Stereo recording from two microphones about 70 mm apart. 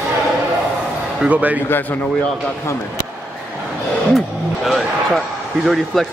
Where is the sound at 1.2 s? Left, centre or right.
Right.